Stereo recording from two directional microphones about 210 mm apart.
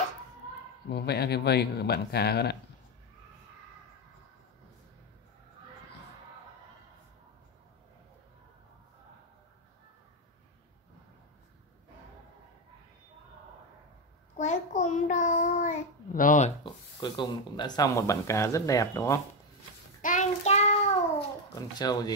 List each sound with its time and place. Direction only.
0.8 s speech: 50° left (ahead or behind)
14.3 s child singing: 35° left (ahead or behind)
16.6 s speech: 20° left (ahead or behind)
20.0 s child singing: 35° left (ahead or behind)
21.5 s speech: 20° left (ahead or behind)